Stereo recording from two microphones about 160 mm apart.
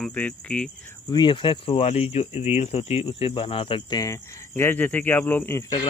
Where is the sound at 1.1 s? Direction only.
30° left (ahead or behind); by 5.6 s 15° left (ahead or behind).